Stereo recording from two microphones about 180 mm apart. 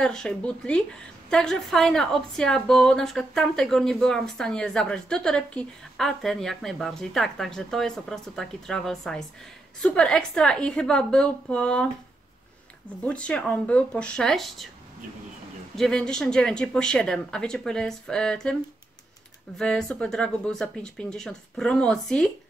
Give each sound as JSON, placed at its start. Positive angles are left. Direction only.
{"t": 0.0, "sound": "a woman's voice", "side_deg": 5}
{"t": 13.0, "sound": "a woman's voice", "side_deg": 5}
{"t": 15.7, "sound": "a woman's voice", "side_deg": 5}
{"t": 19.6, "sound": "a woman's voice", "side_deg": 5}